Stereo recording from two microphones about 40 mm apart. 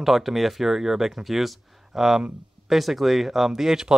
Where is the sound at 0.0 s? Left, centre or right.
Centre.